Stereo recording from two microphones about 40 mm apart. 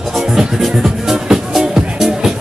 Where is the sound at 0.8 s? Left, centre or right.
Centre.